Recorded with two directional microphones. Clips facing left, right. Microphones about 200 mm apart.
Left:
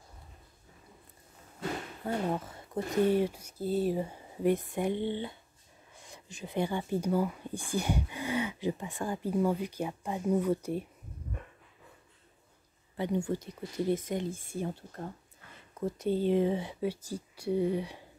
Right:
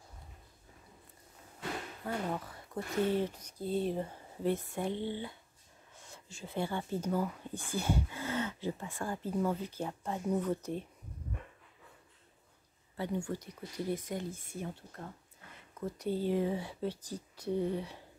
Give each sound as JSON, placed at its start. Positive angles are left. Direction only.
{"t": 2.0, "sound": "speech", "side_deg": 25}
{"t": 12.9, "sound": "speech", "side_deg": 20}
{"t": 16.8, "sound": "speech", "side_deg": 10}